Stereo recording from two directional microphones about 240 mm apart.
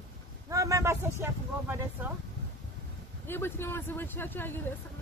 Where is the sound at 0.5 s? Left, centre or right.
Centre.